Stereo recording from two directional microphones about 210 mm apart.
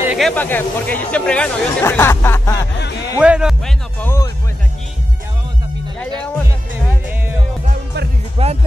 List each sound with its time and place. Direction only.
0.1 s speech: 5° left (ahead or behind)
3.2 s speech: 5° right (ahead or behind)
4.0 s speech: 10° left (ahead or behind)
8.4 s music: 30° right (ahead or behind)